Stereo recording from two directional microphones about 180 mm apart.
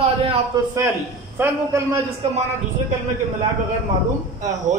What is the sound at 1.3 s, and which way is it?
Speech, 10° right (ahead or behind).